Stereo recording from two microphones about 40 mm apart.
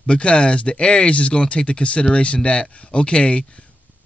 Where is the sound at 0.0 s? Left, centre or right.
Left.